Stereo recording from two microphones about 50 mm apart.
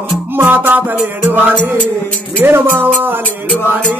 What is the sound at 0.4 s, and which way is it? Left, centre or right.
Music, right.